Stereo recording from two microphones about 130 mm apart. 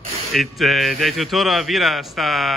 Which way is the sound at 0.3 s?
Centre (ahead or behind).